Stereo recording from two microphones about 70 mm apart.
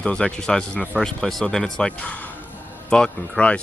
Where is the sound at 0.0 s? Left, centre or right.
Centre.